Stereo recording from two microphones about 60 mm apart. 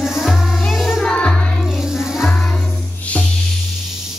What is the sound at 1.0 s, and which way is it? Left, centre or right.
Music, centre.